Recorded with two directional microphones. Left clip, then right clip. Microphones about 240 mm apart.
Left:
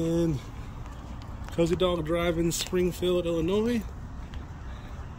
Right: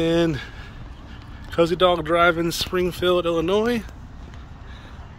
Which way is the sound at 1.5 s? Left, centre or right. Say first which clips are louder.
Right 8 dB; centre.